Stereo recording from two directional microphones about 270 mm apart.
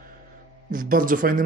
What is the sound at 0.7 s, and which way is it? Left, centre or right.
Speech, right.